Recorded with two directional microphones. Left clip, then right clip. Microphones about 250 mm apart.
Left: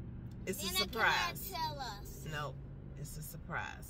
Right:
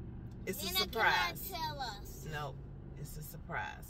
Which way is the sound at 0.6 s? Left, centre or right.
Centre.